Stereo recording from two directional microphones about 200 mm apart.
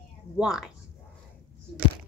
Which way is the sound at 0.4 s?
5° right (ahead or behind).